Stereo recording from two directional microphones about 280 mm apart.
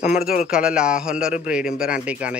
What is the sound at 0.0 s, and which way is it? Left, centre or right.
Speech, left.